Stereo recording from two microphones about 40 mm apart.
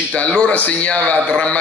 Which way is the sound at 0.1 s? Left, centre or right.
Left.